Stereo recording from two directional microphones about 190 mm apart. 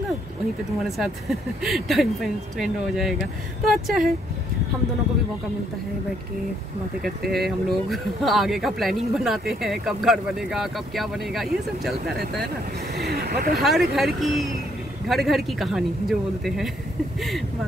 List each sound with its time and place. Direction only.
0.8 s speech: centre (ahead or behind)
7.0 s speech: centre (ahead or behind)
12.9 s speech: 60° right (ahead or behind)
13.6 s speech: centre (ahead or behind)